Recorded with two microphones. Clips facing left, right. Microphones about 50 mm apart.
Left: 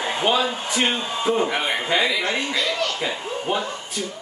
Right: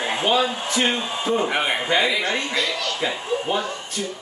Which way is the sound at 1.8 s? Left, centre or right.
Centre.